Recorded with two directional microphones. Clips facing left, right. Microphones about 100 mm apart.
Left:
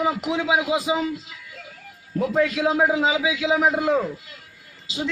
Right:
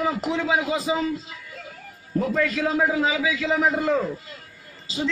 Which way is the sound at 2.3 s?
15° left (ahead or behind).